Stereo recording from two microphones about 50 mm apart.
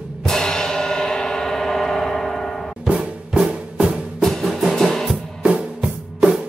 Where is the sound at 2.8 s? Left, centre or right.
Right.